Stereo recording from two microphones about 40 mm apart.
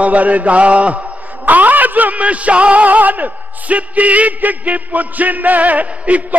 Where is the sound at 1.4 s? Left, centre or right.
Right.